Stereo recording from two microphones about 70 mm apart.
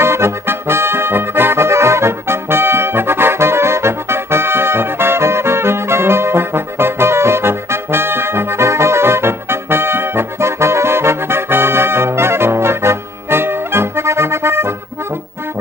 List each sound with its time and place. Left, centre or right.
0.0 s brass instrument: right